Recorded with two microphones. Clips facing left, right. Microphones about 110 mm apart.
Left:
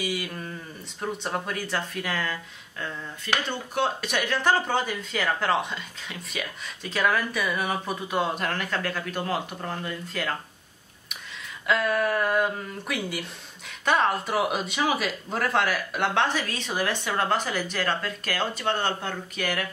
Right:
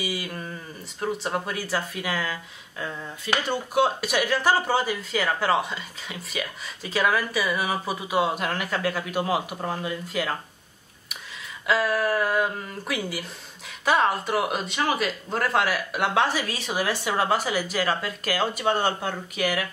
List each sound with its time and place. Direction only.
0.0 s speech: centre (ahead or behind)
3.4 s speech: 10° right (ahead or behind)
11.6 s speech: centre (ahead or behind)